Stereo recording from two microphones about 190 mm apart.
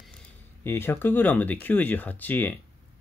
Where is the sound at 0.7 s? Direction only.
10° left (ahead or behind).